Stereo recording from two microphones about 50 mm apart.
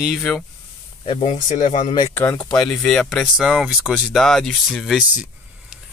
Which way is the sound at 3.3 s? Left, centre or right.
Centre.